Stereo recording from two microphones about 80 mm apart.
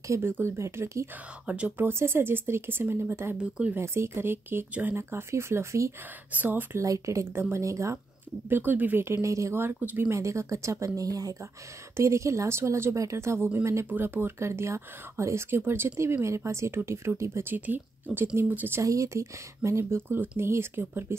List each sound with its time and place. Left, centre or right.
0.1 s speech: right
1.4 s speech: centre
1.9 s speech: right
3.3 s speech: centre
3.7 s speech: right
6.3 s speech: right
6.8 s speech: right
8.5 s speech: right
17.6 s speech: right
18.8 s speech: right